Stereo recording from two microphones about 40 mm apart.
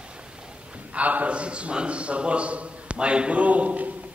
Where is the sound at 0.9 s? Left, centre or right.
Right.